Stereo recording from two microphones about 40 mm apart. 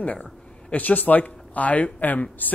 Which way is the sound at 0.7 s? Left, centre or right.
Left.